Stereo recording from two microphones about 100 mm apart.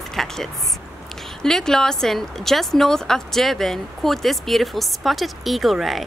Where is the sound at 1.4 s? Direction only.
5° left (ahead or behind).